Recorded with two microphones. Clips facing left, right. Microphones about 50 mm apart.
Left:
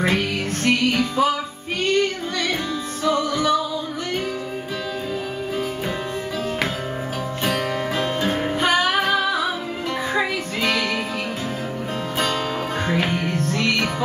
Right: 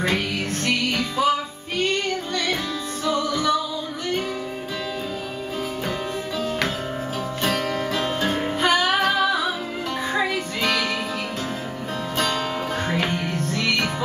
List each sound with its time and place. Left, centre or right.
0.7 s music: centre
3.1 s music: centre
7.4 s music: centre
12.8 s music: centre
13.5 s music: left